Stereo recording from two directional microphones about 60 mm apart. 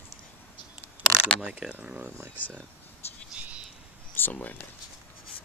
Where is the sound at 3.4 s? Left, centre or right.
Right.